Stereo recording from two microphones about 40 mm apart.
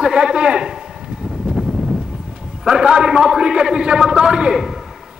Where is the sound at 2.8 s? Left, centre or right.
Right.